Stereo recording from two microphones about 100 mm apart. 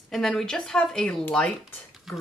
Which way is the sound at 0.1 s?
5° left (ahead or behind).